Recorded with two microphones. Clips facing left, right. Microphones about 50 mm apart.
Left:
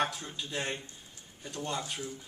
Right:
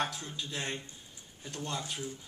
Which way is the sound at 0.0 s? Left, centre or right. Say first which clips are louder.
Left 2 dB; centre.